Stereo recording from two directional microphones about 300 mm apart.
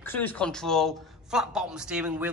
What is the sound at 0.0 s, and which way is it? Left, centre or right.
Speech, centre.